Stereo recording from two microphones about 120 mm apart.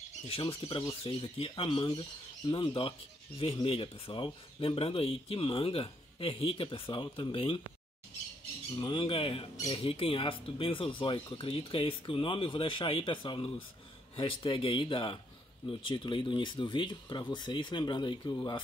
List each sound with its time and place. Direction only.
0.3 s speech: 45° left (ahead or behind)
8.7 s speech: 45° left (ahead or behind)